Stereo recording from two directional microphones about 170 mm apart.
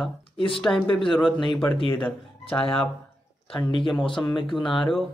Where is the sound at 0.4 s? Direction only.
30° left (ahead or behind).